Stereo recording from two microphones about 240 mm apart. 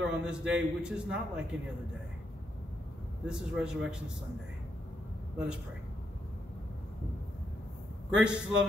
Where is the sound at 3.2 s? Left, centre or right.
Centre.